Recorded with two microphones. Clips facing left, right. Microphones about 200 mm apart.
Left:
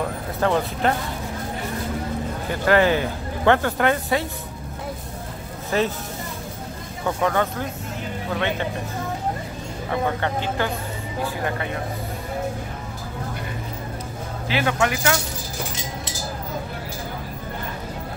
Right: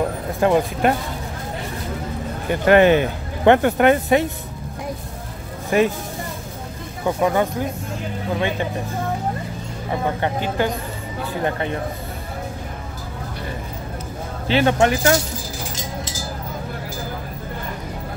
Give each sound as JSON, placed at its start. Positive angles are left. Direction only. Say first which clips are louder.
{"t": 0.4, "sound": "speech", "louder": "right 4 dB", "side_deg": -15}
{"t": 2.6, "sound": "speech", "louder": "right 5 dB", "side_deg": -20}
{"t": 5.7, "sound": "speech", "louder": "right 5 dB", "side_deg": -15}
{"t": 7.1, "sound": "speech", "louder": "right 3 dB", "side_deg": -15}
{"t": 10.2, "sound": "speech", "louder": "right 3 dB", "side_deg": -15}
{"t": 14.5, "sound": "speech", "louder": "right 6 dB", "side_deg": -30}